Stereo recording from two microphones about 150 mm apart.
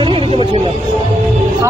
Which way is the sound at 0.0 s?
35° right (ahead or behind).